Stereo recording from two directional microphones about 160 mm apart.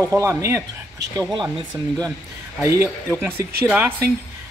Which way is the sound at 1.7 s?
25° right (ahead or behind).